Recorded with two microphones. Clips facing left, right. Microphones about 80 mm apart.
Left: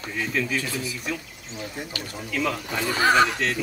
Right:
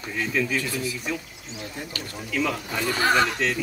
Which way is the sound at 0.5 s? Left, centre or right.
Centre.